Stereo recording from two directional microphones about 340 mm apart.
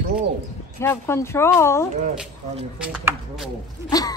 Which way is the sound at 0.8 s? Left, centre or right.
Centre.